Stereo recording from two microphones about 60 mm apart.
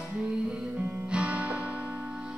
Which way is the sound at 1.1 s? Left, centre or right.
Centre.